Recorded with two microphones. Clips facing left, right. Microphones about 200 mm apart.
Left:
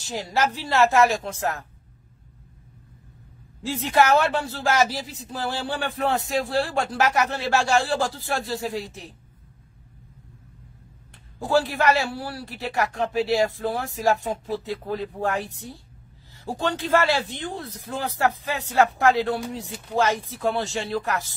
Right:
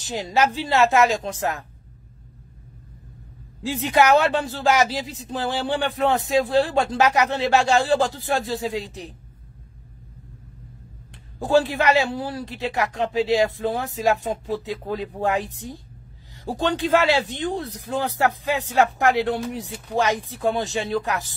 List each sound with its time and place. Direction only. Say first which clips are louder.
0.0 s a man's voice: right 3 dB; 20° right (ahead or behind)
3.6 s speech: right 2 dB; 15° right (ahead or behind)
11.3 s a man's voice: right 3 dB; 15° right (ahead or behind)